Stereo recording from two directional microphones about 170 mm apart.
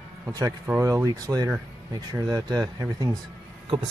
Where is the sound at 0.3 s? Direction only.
20° right (ahead or behind).